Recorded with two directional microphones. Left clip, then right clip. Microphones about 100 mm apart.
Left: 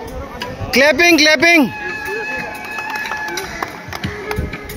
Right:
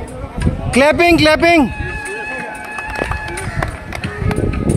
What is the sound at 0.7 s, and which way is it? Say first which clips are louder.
Speech: even; 40° right (ahead or behind).